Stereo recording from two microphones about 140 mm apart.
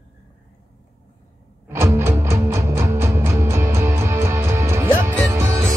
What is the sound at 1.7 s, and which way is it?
Music, 20° right (ahead or behind).